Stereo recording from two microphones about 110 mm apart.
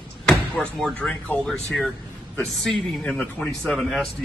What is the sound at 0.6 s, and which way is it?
A man's voice, 10° left (ahead or behind).